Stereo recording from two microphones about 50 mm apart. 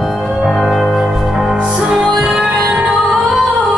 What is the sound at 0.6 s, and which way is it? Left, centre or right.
Music, centre.